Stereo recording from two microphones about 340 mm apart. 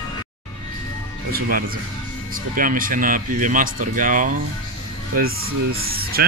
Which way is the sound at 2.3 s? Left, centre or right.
Right.